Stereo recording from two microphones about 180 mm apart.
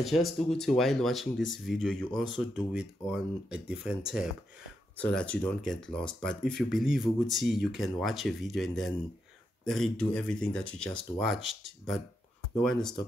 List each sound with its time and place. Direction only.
0.0 s speech: centre (ahead or behind)
4.9 s speech: 5° left (ahead or behind)